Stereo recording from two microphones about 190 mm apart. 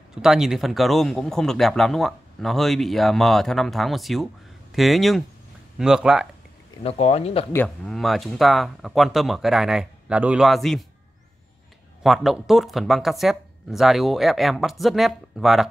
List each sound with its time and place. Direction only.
0.1 s speech: centre (ahead or behind)
6.8 s speech: 30° left (ahead or behind)
7.5 s speech: 5° left (ahead or behind)
12.0 s speech: centre (ahead or behind)